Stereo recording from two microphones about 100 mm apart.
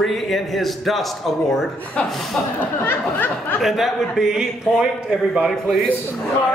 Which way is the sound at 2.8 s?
20° left (ahead or behind).